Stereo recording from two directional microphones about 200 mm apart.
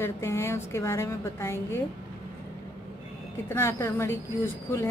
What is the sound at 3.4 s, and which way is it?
Speech, 15° left (ahead or behind).